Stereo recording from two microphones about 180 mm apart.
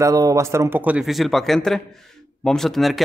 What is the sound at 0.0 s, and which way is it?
A man's voice, 20° right (ahead or behind).